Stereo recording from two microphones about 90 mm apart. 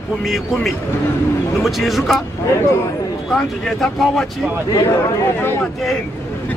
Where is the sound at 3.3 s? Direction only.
Centre (ahead or behind).